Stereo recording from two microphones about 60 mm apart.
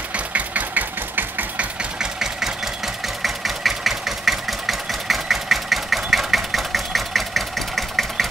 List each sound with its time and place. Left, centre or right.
0.1 s engine: right
1.8 s engine: centre